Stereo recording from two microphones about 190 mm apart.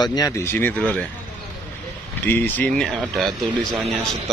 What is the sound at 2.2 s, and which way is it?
A man's voice, 10° left (ahead or behind).